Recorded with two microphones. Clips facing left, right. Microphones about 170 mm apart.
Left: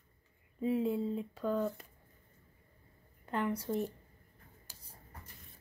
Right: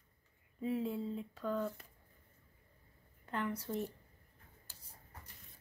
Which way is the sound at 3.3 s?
15° left (ahead or behind).